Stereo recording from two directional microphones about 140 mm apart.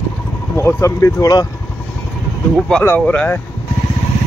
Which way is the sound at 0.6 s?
20° left (ahead or behind).